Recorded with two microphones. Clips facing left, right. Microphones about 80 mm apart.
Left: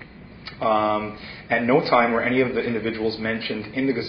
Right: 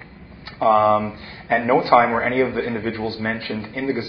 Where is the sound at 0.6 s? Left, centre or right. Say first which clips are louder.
Right 5 dB; right.